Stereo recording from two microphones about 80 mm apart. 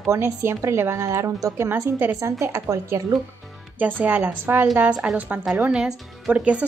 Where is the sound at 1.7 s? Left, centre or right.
Right.